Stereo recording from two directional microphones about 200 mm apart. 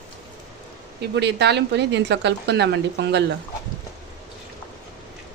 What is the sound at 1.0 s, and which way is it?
Speech, 60° right (ahead or behind).